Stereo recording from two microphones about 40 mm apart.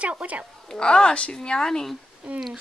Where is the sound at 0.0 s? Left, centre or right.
Right.